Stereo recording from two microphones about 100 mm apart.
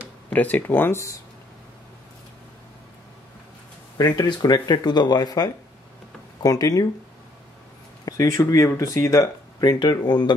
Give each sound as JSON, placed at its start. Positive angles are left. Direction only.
{"t": 0.3, "sound": "speech", "side_deg": 15}
{"t": 4.0, "sound": "speech", "side_deg": 45}
{"t": 8.0, "sound": "speech", "side_deg": 35}
{"t": 9.6, "sound": "speech", "side_deg": 45}